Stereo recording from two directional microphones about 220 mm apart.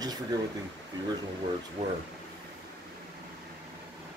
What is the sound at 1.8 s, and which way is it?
Speech, 30° right (ahead or behind).